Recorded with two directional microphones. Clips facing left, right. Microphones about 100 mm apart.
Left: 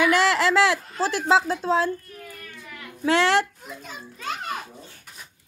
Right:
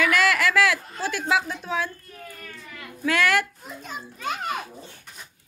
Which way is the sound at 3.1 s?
25° left (ahead or behind).